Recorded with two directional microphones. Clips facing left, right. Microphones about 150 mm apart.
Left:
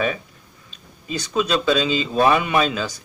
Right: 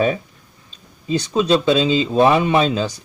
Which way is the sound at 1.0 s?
30° right (ahead or behind).